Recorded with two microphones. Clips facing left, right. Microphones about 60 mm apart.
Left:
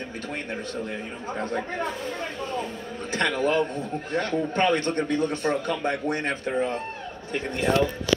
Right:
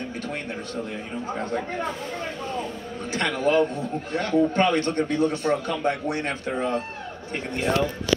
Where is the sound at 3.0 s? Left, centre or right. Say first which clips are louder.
Right 1 dB; left.